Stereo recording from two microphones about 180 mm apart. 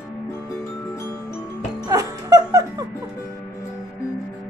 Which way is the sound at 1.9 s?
20° right (ahead or behind).